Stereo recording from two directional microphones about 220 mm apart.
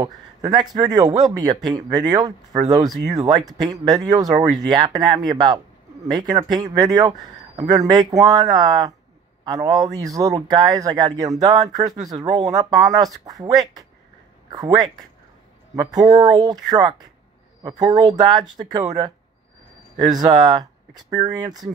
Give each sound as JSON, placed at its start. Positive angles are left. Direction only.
{"t": 0.0, "sound": "a man's voice", "side_deg": -20}